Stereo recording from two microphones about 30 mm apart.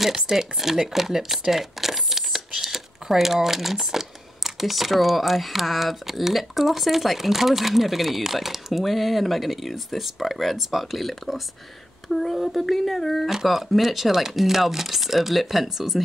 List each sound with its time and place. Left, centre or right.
0.0 s speech: centre
1.5 s a sound: centre
2.6 s speech: centre
13.3 s speech: centre